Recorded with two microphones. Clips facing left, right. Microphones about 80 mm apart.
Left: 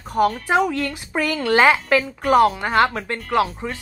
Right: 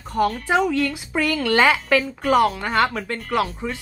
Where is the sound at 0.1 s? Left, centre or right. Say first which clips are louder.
Left 2 dB; centre.